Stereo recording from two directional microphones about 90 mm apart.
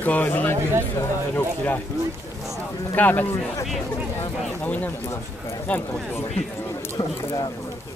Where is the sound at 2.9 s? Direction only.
20° left (ahead or behind).